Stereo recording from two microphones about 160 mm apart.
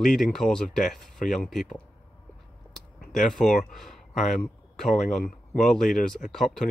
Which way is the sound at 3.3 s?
55° left (ahead or behind).